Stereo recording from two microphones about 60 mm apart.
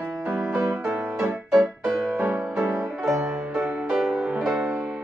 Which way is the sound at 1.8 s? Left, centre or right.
Right.